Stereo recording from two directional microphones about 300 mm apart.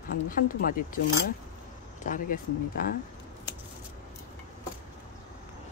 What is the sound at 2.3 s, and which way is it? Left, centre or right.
Speech, left.